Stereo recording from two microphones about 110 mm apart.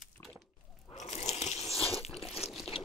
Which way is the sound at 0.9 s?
90° left.